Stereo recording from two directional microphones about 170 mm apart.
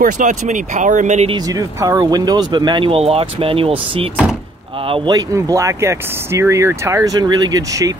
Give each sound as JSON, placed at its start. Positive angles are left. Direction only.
{"t": 0.0, "sound": "speech", "side_deg": -45}
{"t": 1.3, "sound": "speech", "side_deg": -20}
{"t": 5.1, "sound": "speech", "side_deg": -20}